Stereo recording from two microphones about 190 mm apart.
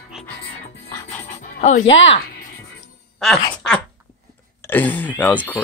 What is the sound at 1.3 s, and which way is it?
Dog, 35° left (ahead or behind).